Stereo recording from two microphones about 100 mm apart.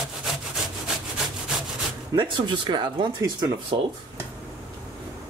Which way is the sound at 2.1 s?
50° right (ahead or behind).